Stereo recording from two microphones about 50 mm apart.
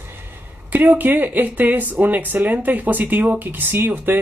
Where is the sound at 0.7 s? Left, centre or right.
Right.